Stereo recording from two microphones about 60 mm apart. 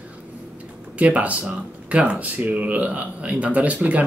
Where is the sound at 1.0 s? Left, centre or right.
Right.